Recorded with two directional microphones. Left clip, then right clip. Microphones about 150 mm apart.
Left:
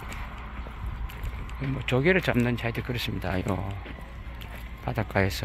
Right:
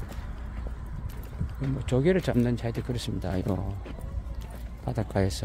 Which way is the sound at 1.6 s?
30° right (ahead or behind).